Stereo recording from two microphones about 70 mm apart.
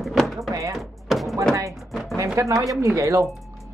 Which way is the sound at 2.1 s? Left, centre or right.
Right.